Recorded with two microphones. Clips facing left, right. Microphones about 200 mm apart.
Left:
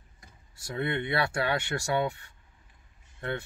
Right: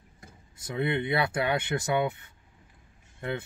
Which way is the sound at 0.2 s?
20° right (ahead or behind).